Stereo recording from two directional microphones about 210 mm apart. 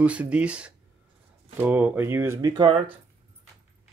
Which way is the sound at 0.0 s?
5° right (ahead or behind).